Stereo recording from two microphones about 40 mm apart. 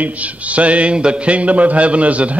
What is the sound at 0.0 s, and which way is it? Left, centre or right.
A man's voice, right.